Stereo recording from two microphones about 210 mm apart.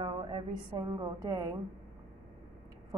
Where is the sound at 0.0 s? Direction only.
25° right (ahead or behind).